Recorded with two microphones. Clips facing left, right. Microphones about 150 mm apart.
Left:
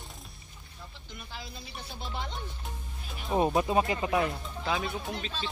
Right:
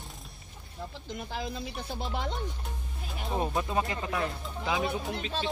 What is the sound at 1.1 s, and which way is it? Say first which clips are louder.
Speech: right 8 dB; 90° right.